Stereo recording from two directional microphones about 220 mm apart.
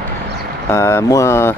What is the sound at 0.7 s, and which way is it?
Speech, 10° left (ahead or behind).